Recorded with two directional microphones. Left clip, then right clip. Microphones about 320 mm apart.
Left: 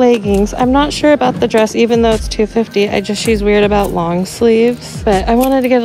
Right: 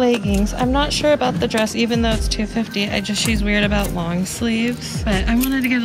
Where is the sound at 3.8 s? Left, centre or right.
Right.